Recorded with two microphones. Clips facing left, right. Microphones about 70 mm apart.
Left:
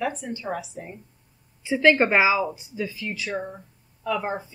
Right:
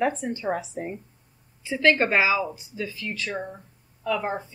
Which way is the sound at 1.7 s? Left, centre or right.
Centre.